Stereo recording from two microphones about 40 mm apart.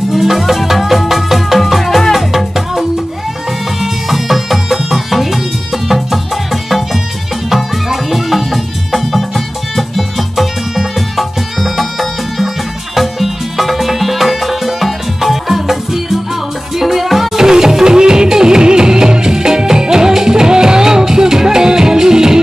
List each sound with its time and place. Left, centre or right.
0.1 s music: centre
17.4 s music: centre